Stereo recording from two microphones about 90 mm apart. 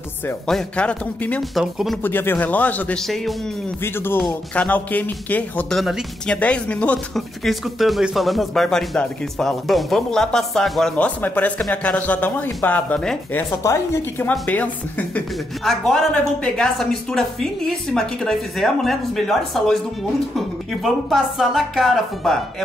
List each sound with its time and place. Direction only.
0.5 s speech: 10° left (ahead or behind)
1.4 s speech: 5° right (ahead or behind)
2.0 s speech: 25° left (ahead or behind)
3.0 s speech: centre (ahead or behind)
3.8 s speech: 25° left (ahead or behind)
5.7 s speech: centre (ahead or behind)
6.2 s speech: 10° left (ahead or behind)
7.2 s speech: centre (ahead or behind); by 13.0 s 20° left (ahead or behind)
13.5 s speech: 35° left (ahead or behind)
14.4 s speech: 15° left (ahead or behind)
15.6 s speech: centre (ahead or behind)